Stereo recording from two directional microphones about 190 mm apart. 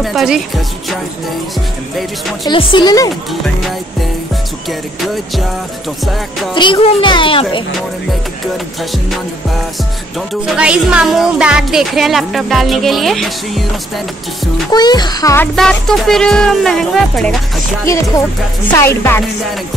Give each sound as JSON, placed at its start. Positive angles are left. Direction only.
{"t": 0.0, "sound": "speech", "side_deg": 0}
{"t": 2.4, "sound": "a child's voice", "side_deg": 25}
{"t": 4.6, "sound": "speech", "side_deg": 0}
{"t": 6.5, "sound": "a child's voice", "side_deg": 25}
{"t": 10.4, "sound": "speech", "side_deg": -5}
{"t": 14.7, "sound": "speech", "side_deg": 20}
{"t": 18.7, "sound": "music", "side_deg": 15}